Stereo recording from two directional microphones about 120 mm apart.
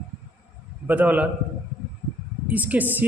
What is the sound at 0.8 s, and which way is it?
Speech, 15° right (ahead or behind).